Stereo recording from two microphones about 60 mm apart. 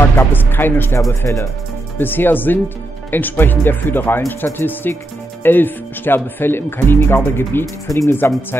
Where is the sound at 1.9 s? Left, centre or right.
Left.